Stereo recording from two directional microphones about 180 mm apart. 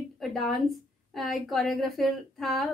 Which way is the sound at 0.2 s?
Centre (ahead or behind).